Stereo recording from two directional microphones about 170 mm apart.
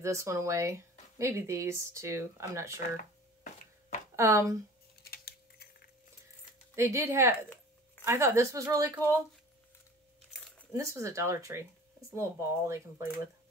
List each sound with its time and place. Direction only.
0.0 s speech: 15° right (ahead or behind)
4.2 s speech: 15° right (ahead or behind)
5.0 s typing: 65° left (ahead or behind)
6.7 s speech: 15° right (ahead or behind)
10.7 s speech: 20° right (ahead or behind)